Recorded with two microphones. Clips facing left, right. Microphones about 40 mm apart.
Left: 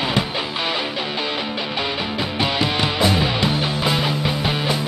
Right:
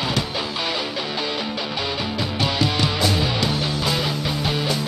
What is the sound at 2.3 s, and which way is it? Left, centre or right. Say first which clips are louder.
Music: left 1 dB; left.